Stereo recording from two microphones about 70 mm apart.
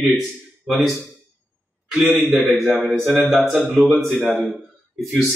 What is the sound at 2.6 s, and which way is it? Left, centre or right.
Mantra, centre.